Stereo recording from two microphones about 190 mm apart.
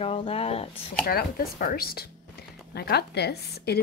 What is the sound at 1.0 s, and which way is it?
A woman's voice, 50° left (ahead or behind).